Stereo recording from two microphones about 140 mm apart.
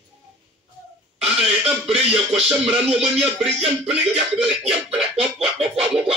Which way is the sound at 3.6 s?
45° right (ahead or behind).